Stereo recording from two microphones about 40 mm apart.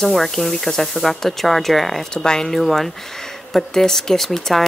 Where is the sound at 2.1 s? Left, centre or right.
Centre.